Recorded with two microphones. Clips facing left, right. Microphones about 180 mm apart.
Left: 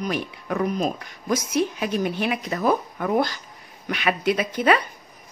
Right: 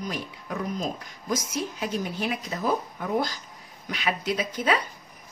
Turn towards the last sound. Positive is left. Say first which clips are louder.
# left 6 dB
turn(degrees=65)  # may be behind; listen again after turning